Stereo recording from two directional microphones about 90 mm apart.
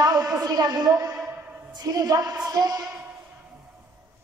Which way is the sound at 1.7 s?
45° right (ahead or behind).